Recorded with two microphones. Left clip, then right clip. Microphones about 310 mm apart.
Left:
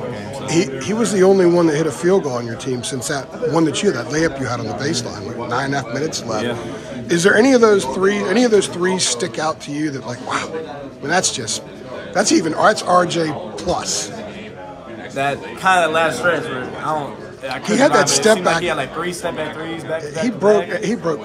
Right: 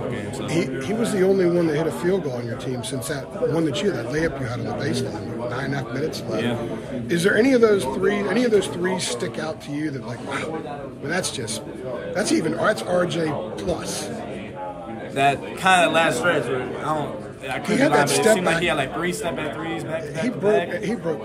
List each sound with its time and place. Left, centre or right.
0.5 s a man's voice: centre
6.0 s speech: centre
7.1 s a man's voice: centre
15.1 s a man's voice: centre
17.5 s a man's voice: centre